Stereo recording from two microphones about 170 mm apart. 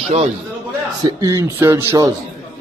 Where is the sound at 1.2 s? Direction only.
20° right (ahead or behind).